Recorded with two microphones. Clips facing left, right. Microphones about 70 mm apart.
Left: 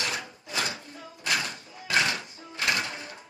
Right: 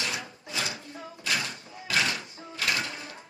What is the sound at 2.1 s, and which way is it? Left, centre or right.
Typewriter, left.